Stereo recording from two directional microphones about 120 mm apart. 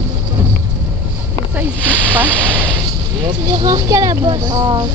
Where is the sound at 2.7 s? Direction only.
40° right (ahead or behind).